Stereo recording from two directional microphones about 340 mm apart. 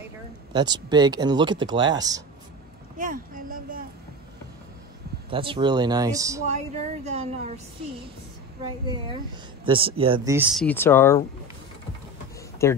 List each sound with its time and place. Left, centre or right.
0.5 s speech: centre
3.0 s a sound: right
5.3 s a woman's voice: centre
8.8 s speech: centre
12.6 s speech: centre